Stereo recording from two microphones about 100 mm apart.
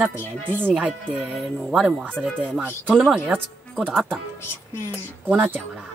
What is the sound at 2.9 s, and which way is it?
Speech, centre (ahead or behind).